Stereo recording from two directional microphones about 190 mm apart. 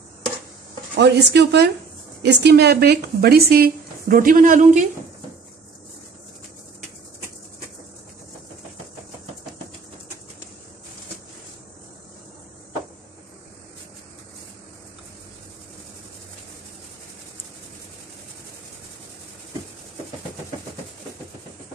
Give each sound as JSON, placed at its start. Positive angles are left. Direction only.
{"t": 0.9, "sound": "speech", "side_deg": -65}